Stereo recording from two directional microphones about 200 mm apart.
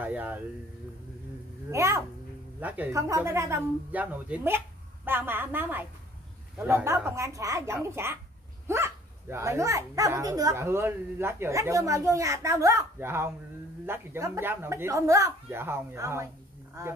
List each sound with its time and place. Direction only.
0.0 s speech: 10° right (ahead or behind)
1.7 s speech: 15° right (ahead or behind)